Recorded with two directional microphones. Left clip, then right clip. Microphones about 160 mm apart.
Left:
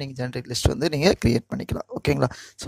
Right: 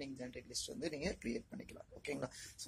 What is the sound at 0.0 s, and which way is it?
Speech, 55° left (ahead or behind).